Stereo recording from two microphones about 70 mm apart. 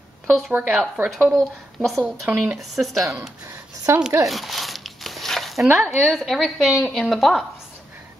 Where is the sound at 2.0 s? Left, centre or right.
Right.